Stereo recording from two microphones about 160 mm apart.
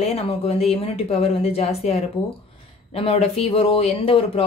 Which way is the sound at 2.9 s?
40° left (ahead or behind).